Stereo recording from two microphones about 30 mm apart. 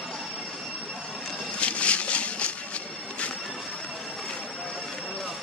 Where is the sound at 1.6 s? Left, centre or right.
Left.